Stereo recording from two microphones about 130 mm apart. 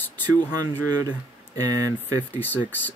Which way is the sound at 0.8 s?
25° right (ahead or behind).